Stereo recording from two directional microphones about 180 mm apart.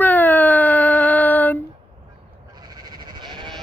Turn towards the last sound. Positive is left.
turn(degrees=-25)  # may be behind; listen again after turning